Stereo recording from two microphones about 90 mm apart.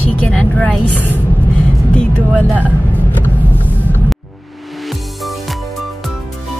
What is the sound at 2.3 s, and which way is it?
Speech, 20° right (ahead or behind).